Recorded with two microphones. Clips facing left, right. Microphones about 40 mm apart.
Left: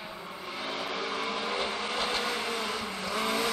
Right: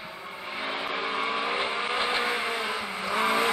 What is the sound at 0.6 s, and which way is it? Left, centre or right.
Vehicle, right.